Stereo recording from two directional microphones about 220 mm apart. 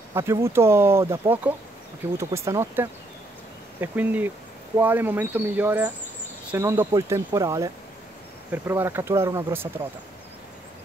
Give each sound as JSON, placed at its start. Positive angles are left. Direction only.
{"t": 0.1, "sound": "speech", "side_deg": -10}